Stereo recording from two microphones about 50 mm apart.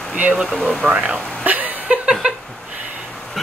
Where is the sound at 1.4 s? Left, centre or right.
Right.